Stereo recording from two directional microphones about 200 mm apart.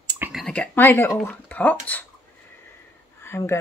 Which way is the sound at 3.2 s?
10° left (ahead or behind).